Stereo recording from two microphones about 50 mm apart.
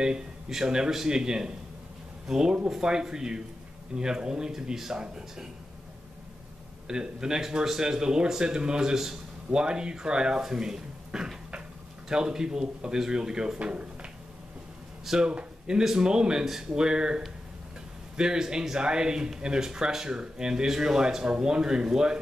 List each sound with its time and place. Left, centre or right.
0.0 s speech: centre
6.9 s speech: centre
13.6 s speech: right
15.0 s speech: centre